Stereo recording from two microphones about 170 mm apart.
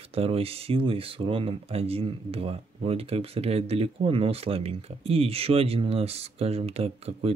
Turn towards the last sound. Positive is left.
turn(degrees=-35)  # may be behind; listen again after turning